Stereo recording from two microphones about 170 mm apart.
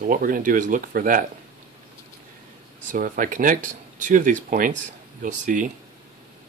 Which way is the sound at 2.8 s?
50° right (ahead or behind).